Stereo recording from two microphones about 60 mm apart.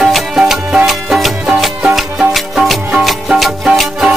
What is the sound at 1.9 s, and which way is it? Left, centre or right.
Music, centre.